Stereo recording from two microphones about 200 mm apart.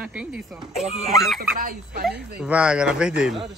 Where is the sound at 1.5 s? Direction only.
45° right (ahead or behind).